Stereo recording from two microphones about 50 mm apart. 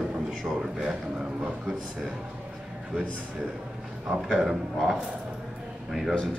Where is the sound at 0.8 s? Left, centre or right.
Right.